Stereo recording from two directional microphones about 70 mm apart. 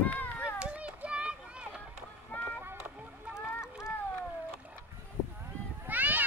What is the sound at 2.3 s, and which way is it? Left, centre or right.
Music, left.